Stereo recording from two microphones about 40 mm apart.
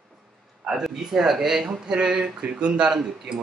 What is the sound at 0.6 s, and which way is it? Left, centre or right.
A man's voice, centre.